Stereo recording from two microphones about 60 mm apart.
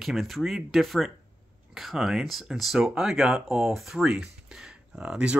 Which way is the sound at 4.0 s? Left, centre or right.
Centre.